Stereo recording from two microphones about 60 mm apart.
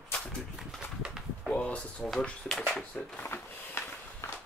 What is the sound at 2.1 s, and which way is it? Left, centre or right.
Speech, centre.